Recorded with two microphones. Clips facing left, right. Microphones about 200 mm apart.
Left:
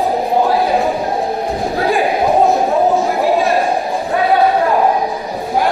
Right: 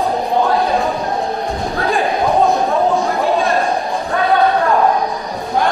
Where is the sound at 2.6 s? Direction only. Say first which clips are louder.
Left 2 dB; 20° left (ahead or behind).